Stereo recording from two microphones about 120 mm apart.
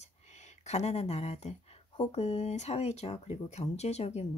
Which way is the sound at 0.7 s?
70° left (ahead or behind).